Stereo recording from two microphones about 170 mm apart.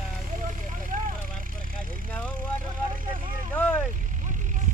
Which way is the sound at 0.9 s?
50° right (ahead or behind).